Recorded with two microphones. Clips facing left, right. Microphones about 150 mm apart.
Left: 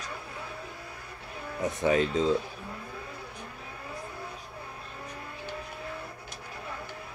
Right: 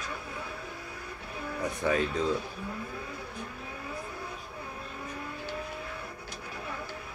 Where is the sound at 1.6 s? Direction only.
20° left (ahead or behind).